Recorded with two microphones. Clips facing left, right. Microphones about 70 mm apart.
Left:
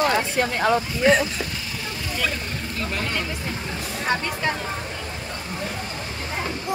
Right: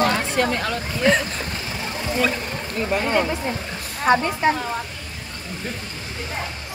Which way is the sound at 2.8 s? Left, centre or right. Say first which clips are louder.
Right 8 dB; centre.